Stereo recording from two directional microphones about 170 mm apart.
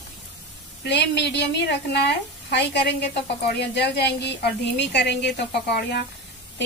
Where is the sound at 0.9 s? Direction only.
85° left.